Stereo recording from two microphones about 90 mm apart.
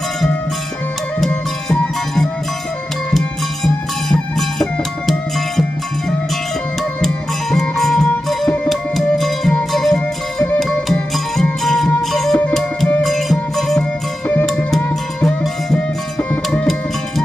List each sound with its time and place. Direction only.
1.2 s music: 5° left (ahead or behind)
7.5 s music: 5° left (ahead or behind)